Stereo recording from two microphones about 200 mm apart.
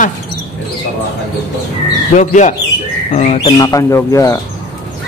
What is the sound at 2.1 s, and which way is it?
Speech, 35° left (ahead or behind).